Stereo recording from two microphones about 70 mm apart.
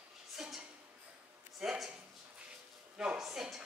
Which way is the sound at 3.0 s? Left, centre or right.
Centre.